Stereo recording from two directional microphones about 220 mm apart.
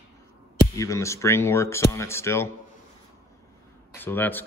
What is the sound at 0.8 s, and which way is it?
A man's voice, 15° left (ahead or behind).